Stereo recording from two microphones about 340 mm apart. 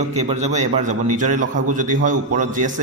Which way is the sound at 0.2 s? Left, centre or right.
Centre.